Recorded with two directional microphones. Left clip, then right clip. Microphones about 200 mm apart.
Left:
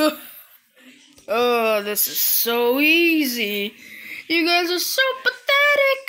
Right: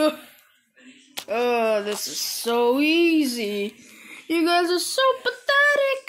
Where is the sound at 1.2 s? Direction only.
25° left (ahead or behind).